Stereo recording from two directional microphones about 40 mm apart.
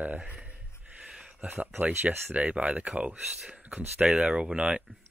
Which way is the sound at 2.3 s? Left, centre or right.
Right.